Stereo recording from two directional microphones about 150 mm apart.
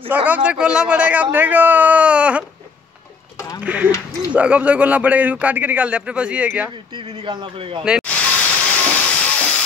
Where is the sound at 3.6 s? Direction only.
10° right (ahead or behind).